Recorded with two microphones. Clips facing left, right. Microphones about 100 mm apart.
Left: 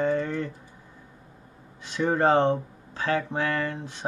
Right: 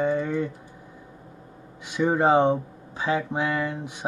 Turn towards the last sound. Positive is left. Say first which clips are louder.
# right 1 dB
turn(degrees=-15)  # may be behind; listen again after turning